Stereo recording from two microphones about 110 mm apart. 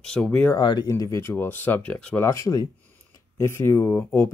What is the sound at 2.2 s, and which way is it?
Speech, 30° left (ahead or behind).